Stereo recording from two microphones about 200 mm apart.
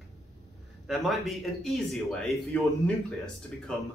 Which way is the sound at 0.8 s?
Centre (ahead or behind).